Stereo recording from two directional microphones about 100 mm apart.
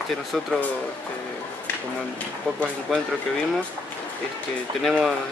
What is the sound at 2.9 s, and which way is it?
Speech, centre (ahead or behind).